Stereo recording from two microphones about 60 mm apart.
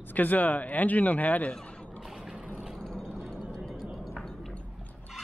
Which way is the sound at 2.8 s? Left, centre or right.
Centre.